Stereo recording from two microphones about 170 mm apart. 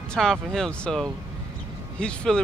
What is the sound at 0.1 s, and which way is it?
Speech, centre (ahead or behind).